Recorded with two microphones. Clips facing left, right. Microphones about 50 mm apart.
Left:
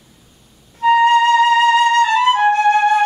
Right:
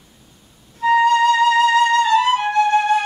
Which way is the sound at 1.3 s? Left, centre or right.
Centre.